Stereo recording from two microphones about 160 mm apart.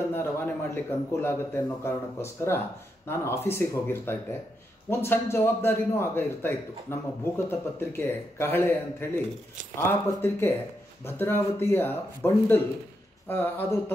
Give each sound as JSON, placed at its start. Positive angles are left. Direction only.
{"t": 0.1, "sound": "a man's voice", "side_deg": 15}